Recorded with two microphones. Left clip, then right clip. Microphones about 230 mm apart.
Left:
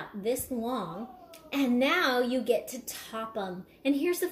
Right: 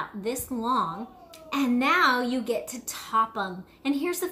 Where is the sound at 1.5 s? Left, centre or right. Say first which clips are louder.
Right 3 dB; centre.